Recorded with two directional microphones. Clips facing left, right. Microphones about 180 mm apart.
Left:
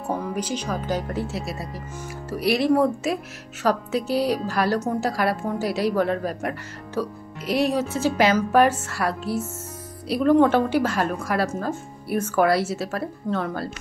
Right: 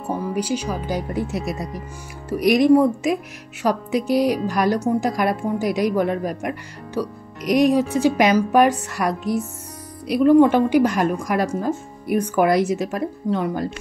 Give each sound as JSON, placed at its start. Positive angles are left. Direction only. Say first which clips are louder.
{"t": 0.0, "sound": "a woman's voice", "louder": "right 3 dB", "side_deg": -5}